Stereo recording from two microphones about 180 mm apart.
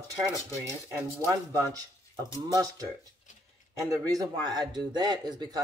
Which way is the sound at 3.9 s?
20° right (ahead or behind).